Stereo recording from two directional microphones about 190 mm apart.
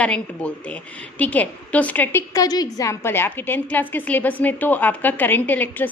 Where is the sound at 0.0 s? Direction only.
5° left (ahead or behind).